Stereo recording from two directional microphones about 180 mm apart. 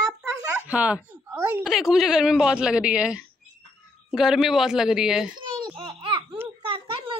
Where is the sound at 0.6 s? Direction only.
5° right (ahead or behind).